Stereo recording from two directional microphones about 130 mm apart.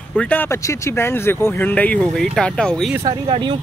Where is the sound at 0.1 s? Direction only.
10° left (ahead or behind).